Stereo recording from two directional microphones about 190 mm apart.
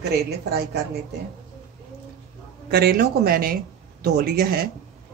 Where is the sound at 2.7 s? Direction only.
55° right (ahead or behind).